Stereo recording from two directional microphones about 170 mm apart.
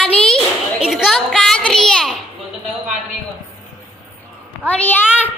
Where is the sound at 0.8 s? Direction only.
Centre (ahead or behind).